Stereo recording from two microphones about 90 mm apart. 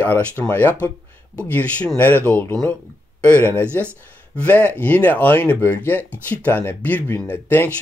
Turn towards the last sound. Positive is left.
turn(degrees=20)  # may be behind; listen again after turning